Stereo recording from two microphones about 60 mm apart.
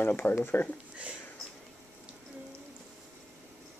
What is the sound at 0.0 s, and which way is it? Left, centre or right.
Speech, left.